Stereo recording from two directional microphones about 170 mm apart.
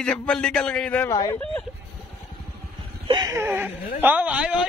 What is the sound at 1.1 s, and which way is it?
Speech, 20° left (ahead or behind).